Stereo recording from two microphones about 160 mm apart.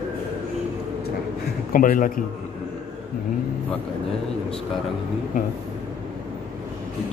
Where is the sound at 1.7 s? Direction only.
60° left (ahead or behind).